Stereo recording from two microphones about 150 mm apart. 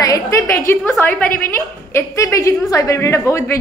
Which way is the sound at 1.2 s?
65° left (ahead or behind).